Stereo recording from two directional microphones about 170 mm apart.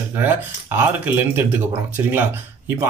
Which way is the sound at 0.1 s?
10° right (ahead or behind).